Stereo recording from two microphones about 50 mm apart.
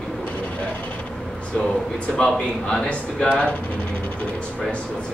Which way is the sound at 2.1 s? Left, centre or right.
Centre.